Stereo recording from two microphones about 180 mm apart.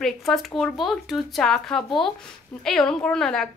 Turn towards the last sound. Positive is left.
turn(degrees=0)  # may be behind; listen again after turning